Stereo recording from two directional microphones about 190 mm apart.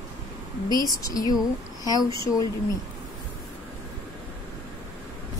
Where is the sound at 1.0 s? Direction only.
20° left (ahead or behind).